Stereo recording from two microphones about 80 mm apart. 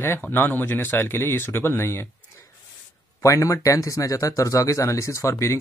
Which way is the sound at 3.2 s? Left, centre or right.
Left.